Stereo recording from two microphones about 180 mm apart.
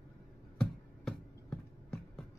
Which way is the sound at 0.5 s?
5° left (ahead or behind).